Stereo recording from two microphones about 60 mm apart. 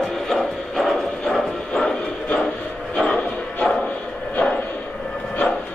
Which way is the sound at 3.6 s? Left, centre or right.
Centre.